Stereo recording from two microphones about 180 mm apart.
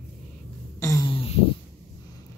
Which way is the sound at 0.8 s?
15° left (ahead or behind).